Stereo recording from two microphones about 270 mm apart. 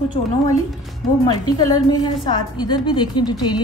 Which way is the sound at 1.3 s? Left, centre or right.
Centre.